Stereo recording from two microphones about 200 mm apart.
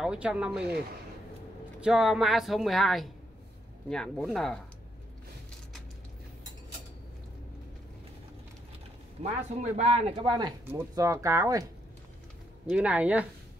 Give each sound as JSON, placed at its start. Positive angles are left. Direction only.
{"t": 0.0, "sound": "speech", "side_deg": -5}
{"t": 1.8, "sound": "speech", "side_deg": -5}
{"t": 9.2, "sound": "speech", "side_deg": -35}
{"t": 10.6, "sound": "speech", "side_deg": -15}
{"t": 12.6, "sound": "speech", "side_deg": -5}